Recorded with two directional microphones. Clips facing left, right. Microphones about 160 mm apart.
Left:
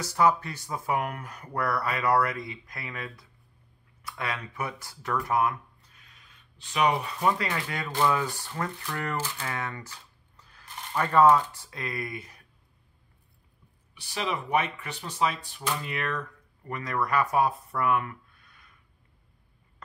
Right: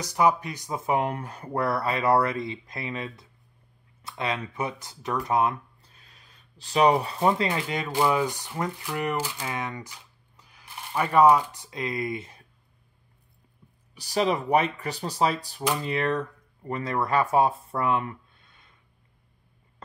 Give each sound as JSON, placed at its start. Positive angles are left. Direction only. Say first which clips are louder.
{"t": 0.0, "sound": "speech", "louder": "right 1 dB", "side_deg": -15}
{"t": 13.9, "sound": "speech", "louder": "right 7 dB", "side_deg": -40}